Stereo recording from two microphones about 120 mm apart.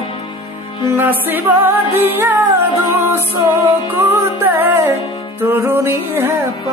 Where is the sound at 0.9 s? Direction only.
15° right (ahead or behind).